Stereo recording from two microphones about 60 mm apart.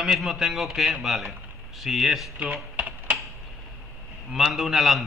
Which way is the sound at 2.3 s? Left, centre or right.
Right.